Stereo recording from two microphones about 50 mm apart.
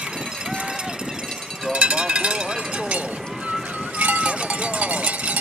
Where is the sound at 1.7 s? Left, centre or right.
Right.